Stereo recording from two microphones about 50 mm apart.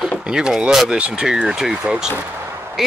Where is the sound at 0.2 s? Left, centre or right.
Centre.